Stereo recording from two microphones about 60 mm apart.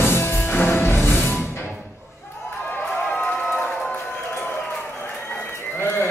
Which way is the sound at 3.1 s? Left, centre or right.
Left.